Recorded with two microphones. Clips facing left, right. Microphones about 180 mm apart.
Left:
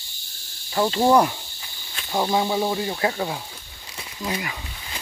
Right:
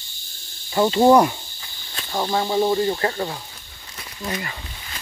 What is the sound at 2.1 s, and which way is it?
Speech, 10° left (ahead or behind).